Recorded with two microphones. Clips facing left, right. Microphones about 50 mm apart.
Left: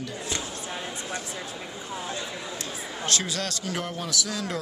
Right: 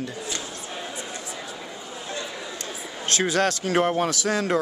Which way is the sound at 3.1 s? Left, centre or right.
Right.